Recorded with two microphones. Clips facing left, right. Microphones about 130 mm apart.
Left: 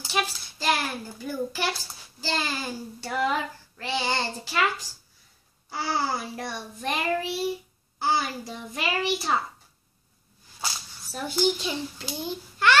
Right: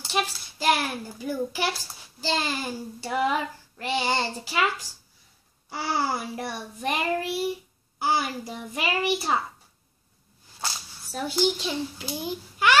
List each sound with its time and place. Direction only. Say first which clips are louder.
0.0 s a child's voice: right 1 dB; 5° right (ahead or behind)
5.9 s a child's voice: right 2 dB; 10° right (ahead or behind)
10.6 s a child's voice: even; centre (ahead or behind)